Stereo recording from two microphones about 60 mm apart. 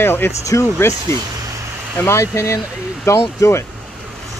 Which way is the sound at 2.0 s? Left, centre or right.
Left.